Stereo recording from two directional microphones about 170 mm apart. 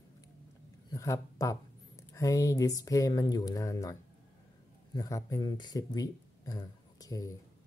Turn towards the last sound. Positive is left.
turn(degrees=20)  # may be behind; listen again after turning